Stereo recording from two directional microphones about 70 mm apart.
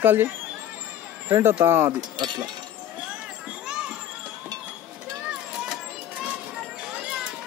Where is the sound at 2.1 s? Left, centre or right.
Right.